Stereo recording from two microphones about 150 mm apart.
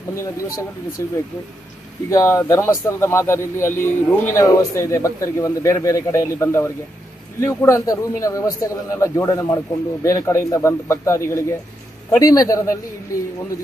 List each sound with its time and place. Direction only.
0.1 s speech: 20° left (ahead or behind)